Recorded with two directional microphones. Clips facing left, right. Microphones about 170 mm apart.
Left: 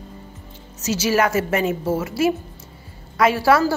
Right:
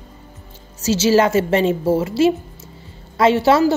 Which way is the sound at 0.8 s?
30° right (ahead or behind).